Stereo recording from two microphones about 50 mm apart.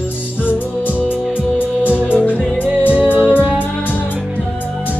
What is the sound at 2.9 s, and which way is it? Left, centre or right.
Music, right.